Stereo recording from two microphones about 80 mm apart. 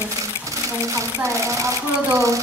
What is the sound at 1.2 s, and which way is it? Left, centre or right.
Speech, right.